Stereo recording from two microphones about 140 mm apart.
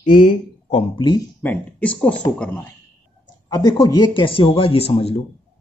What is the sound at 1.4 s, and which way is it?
Speech, 10° left (ahead or behind).